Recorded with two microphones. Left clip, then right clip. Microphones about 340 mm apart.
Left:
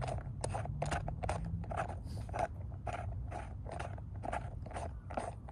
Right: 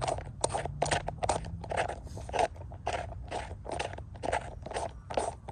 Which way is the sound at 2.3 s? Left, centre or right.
Left.